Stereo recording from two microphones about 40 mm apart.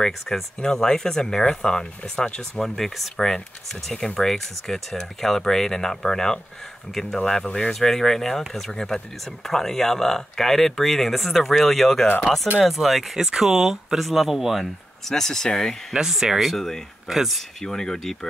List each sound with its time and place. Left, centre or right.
0.0 s speech: centre
2.6 s speech: centre
13.2 s speech: centre
14.6 s speech: centre
15.9 s speech: centre
16.4 s speech: centre
17.1 s speech: centre
17.6 s speech: centre